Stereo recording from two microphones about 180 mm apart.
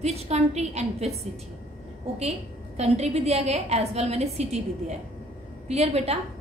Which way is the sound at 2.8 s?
35° right (ahead or behind).